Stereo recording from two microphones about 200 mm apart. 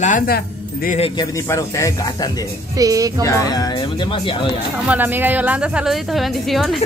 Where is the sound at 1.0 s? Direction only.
20° left (ahead or behind).